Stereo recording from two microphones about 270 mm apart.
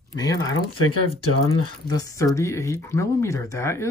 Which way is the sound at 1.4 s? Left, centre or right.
Centre.